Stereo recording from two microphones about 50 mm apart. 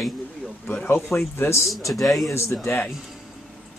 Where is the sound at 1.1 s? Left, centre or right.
Left.